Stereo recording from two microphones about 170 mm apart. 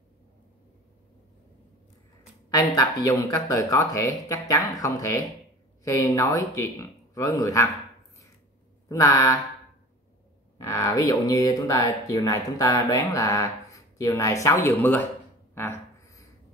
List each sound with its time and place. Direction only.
2.5 s speech: 20° left (ahead or behind)
8.8 s speech: 20° left (ahead or behind)
10.6 s speech: 20° left (ahead or behind)
15.5 s a sound: 15° left (ahead or behind)